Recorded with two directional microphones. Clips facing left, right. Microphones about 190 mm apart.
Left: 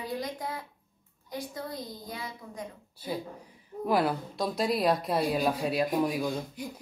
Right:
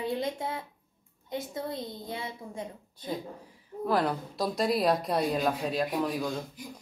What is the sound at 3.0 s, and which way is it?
A woman's voice, 10° left (ahead or behind).